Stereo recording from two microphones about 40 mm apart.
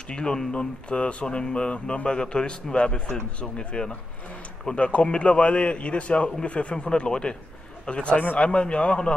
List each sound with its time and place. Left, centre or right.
0.1 s a man's voice: left